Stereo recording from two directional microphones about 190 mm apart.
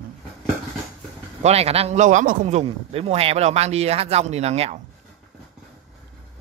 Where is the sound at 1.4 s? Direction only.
35° right (ahead or behind).